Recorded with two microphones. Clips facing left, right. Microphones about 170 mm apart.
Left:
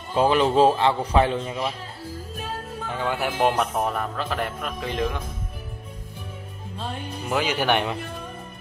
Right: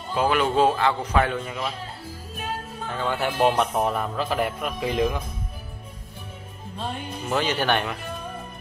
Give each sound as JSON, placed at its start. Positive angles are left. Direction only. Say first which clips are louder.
{"t": 0.1, "sound": "a man's voice", "louder": "left 3 dB", "side_deg": 30}
{"t": 2.9, "sound": "speech", "louder": "even", "side_deg": 10}
{"t": 7.2, "sound": "speech", "louder": "left 1 dB", "side_deg": 10}